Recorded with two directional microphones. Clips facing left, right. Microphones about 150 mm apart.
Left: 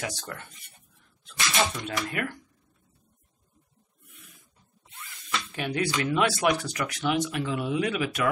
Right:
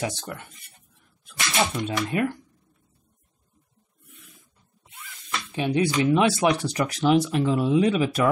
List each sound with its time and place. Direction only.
0.0 s speech: 20° right (ahead or behind)
1.6 s speech: 15° right (ahead or behind)
5.5 s speech: 20° right (ahead or behind)